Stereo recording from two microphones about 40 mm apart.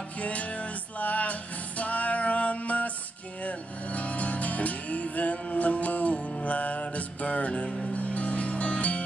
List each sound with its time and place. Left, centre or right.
0.2 s music: left